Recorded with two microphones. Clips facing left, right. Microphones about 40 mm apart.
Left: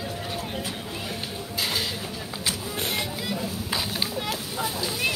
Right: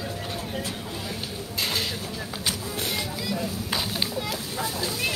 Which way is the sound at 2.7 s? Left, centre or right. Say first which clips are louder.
Left 1 dB; left.